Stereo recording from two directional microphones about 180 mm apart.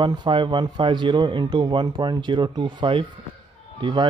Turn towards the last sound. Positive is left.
turn(degrees=-25)  # may be behind; listen again after turning